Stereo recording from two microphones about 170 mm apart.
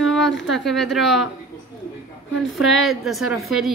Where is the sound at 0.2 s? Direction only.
90° left.